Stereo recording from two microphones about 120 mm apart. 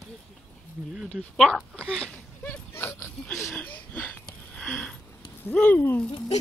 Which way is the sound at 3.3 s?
5° left (ahead or behind).